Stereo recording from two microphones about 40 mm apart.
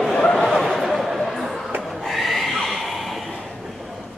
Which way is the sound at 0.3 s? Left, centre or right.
Centre.